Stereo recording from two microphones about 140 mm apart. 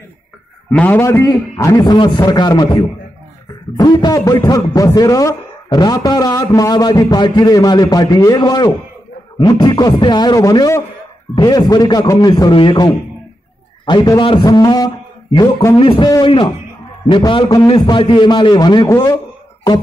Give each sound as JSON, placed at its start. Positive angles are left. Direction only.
{"t": 0.7, "sound": "a man's voice", "side_deg": 10}
{"t": 12.4, "sound": "a man's voice", "side_deg": 40}
{"t": 13.8, "sound": "a man's voice", "side_deg": 30}
{"t": 18.9, "sound": "a man's voice", "side_deg": 20}